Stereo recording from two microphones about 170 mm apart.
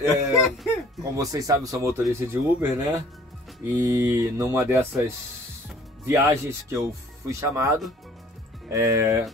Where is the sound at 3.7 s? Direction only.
15° right (ahead or behind).